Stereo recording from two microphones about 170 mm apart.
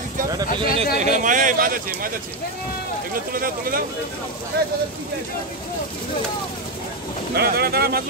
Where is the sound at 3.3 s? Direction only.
60° right (ahead or behind).